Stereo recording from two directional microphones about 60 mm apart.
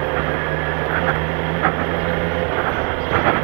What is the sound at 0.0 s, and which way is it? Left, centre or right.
Vehicle, right.